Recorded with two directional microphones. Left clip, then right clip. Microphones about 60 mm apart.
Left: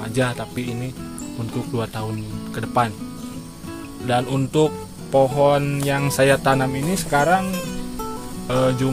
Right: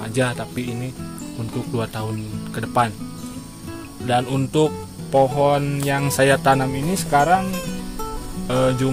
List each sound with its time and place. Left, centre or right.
0.0 s speech: right
0.6 s music: centre
2.5 s music: right
4.0 s speech: centre
5.3 s music: centre
6.0 s music: right
6.6 s speech: right
7.2 s music: centre
8.5 s speech: right